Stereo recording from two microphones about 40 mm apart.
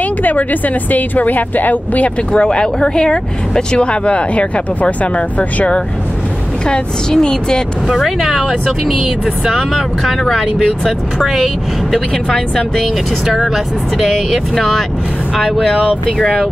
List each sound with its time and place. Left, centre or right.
0.2 s a woman's voice: left
2.3 s speech: left
6.7 s speech: left
7.9 s speech: centre
9.5 s speech: centre
11.3 s speech: centre
14.3 s speech: centre